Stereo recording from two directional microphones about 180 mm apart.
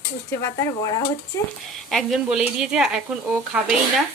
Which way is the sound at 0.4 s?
15° left (ahead or behind).